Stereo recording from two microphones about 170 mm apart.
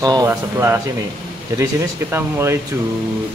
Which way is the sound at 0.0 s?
20° right (ahead or behind).